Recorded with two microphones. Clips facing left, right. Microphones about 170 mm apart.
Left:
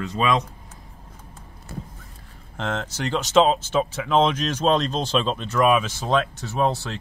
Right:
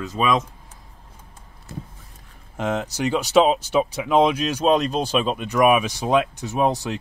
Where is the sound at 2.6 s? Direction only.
15° right (ahead or behind).